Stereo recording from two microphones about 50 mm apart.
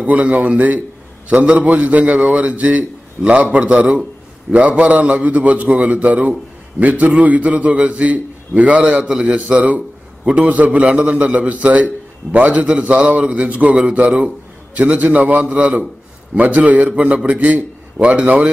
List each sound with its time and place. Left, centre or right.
0.0 s a man's voice: right
14.8 s a man's voice: right
16.9 s a man's voice: right